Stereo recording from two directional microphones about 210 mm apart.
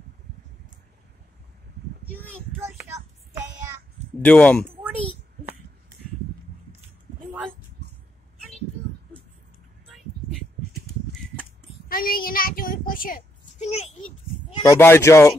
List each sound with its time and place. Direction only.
2.2 s child singing: 15° right (ahead or behind)
4.2 s speech: 5° left (ahead or behind)
7.8 s a sound: 55° right (ahead or behind)
11.9 s child singing: 45° left (ahead or behind)
14.6 s speech: 15° left (ahead or behind)